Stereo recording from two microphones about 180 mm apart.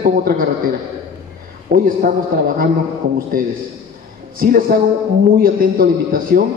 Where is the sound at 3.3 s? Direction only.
50° right (ahead or behind).